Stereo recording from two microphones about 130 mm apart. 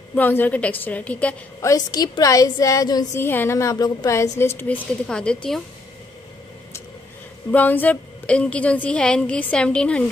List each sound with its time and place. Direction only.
0.1 s a woman's voice: 15° left (ahead or behind)
1.6 s a woman's voice: 30° left (ahead or behind)
3.2 s a woman's voice: 15° left (ahead or behind)
7.5 s a woman's voice: 15° left (ahead or behind)